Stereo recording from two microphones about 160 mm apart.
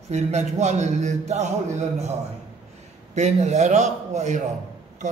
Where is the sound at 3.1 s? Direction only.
45° right (ahead or behind).